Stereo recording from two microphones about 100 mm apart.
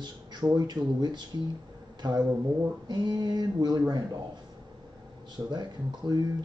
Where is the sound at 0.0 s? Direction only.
45° right (ahead or behind).